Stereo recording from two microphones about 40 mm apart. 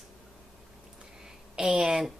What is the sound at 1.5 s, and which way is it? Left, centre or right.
Speech, right.